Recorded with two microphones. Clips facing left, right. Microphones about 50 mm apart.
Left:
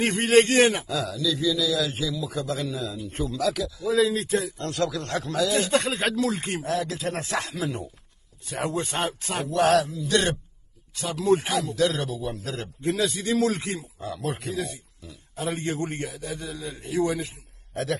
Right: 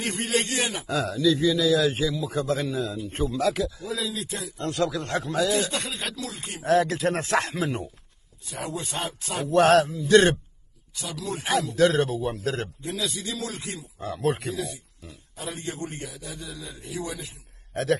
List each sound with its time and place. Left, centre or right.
0.0 s a man's voice: left
0.8 s a man's voice: right
3.8 s speech: left
4.6 s speech: right
5.5 s speech: left
6.6 s a man's voice: right
8.5 s speech: left
9.5 s a man's voice: right
11.0 s a man's voice: left
11.7 s a man's voice: right
12.8 s speech: left
13.9 s a man's voice: right
14.5 s a man's voice: left